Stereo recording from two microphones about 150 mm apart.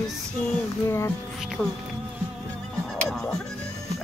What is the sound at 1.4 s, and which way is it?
Speech, centre (ahead or behind).